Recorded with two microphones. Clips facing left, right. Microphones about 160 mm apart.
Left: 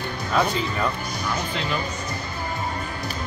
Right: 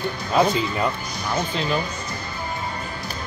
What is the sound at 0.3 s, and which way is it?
Speech, 20° right (ahead or behind).